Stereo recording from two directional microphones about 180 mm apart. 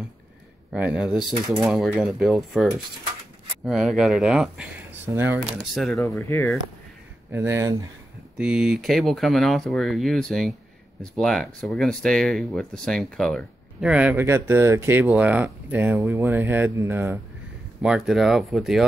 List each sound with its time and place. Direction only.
0.7 s speech: 5° right (ahead or behind)
5.6 s speech: centre (ahead or behind)
5.9 s speech: 15° left (ahead or behind)
7.2 s speech: 15° right (ahead or behind)
8.4 s speech: 5° right (ahead or behind)
17.8 s speech: centre (ahead or behind)